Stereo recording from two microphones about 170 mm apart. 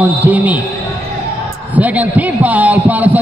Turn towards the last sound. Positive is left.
turn(degrees=-10)  # may be behind; listen again after turning